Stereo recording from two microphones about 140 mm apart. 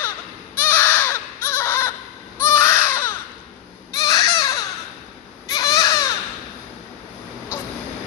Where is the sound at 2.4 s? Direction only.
20° left (ahead or behind).